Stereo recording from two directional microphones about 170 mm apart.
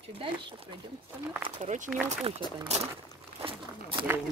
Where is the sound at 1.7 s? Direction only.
45° right (ahead or behind).